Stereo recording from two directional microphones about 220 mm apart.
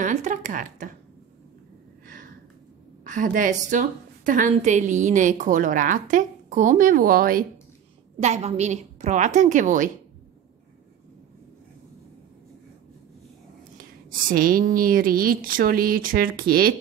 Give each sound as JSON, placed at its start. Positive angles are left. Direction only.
{"t": 0.0, "sound": "speech", "side_deg": -35}
{"t": 3.0, "sound": "a woman's voice", "side_deg": -35}
{"t": 8.2, "sound": "a woman's voice", "side_deg": -30}
{"t": 14.2, "sound": "a woman's voice", "side_deg": -40}